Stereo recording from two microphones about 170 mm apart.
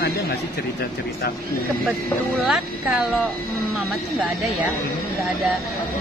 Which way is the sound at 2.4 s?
5° right (ahead or behind).